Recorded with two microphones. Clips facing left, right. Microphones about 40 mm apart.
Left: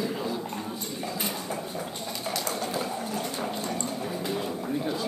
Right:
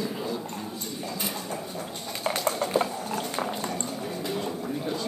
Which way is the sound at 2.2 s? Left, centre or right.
Right.